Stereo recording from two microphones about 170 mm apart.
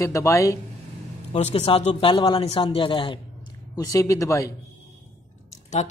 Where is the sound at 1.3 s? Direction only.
35° left (ahead or behind); by 4.5 s 20° left (ahead or behind).